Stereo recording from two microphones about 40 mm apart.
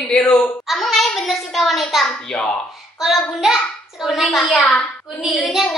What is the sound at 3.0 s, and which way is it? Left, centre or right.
A child's voice, centre.